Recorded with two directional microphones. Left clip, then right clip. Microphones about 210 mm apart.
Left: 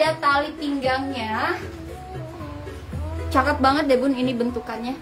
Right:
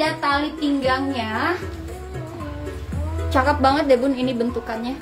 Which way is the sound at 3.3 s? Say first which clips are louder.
Right 1 dB; 15° left (ahead or behind).